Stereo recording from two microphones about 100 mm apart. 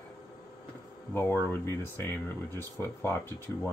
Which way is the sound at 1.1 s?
20° left (ahead or behind).